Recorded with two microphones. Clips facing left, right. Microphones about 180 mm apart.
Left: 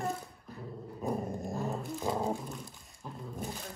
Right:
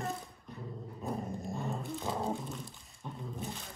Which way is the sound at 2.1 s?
Centre (ahead or behind).